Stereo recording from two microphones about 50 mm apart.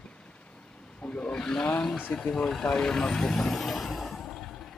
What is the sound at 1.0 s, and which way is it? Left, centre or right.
Vehicle, centre.